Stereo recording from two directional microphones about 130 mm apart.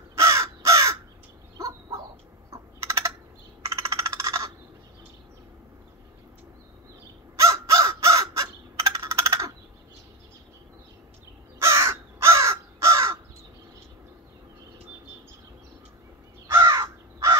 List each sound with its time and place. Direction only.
0.2 s crow: 25° right (ahead or behind)
1.6 s a sound: 25° right (ahead or behind)
3.6 s coin: 25° right (ahead or behind)
7.3 s crow: 25° right (ahead or behind)
11.6 s crow: 20° right (ahead or behind)
16.5 s crow: 25° right (ahead or behind)